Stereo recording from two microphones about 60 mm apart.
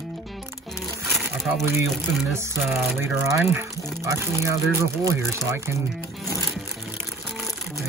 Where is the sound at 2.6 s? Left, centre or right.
Centre.